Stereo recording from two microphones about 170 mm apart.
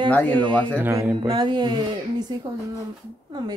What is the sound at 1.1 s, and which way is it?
Speech, 25° right (ahead or behind).